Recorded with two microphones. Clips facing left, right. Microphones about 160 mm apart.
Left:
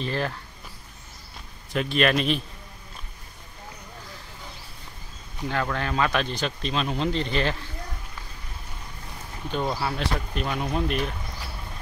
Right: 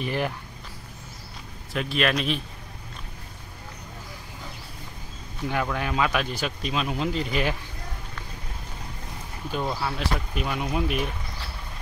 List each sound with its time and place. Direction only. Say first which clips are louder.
0.0 s speech: right 1 dB; 15° right (ahead or behind)
1.7 s speech: left 2 dB; centre (ahead or behind)
5.5 s speech: even; 10° right (ahead or behind)
9.6 s speech: left 1 dB; 5° left (ahead or behind)